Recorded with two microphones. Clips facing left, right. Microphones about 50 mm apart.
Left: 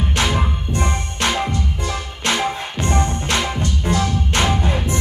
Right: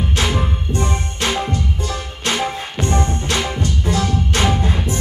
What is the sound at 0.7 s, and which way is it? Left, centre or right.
Music, left.